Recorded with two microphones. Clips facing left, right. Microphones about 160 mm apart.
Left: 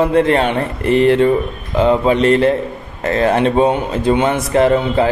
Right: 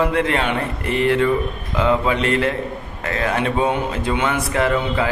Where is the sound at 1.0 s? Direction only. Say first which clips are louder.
Left 3 dB; 25° left (ahead or behind).